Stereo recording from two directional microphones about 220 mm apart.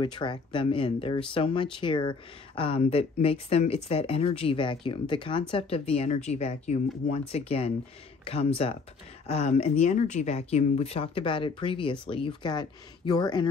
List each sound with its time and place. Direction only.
0.0 s speech: 20° left (ahead or behind)